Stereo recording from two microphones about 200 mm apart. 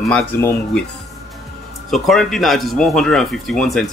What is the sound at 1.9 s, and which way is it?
Speech, centre (ahead or behind).